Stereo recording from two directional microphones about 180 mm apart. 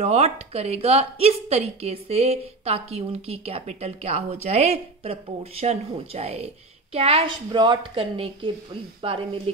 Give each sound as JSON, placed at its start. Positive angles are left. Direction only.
{"t": 0.0, "sound": "a woman's voice", "side_deg": -40}